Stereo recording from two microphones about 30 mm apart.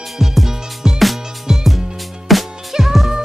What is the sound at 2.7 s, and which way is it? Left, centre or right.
Music, centre.